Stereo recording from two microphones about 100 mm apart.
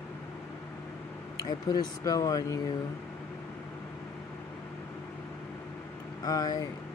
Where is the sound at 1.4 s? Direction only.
40° left (ahead or behind).